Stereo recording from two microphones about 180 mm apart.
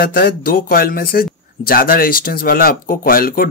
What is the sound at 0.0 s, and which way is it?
Speech, 60° left (ahead or behind).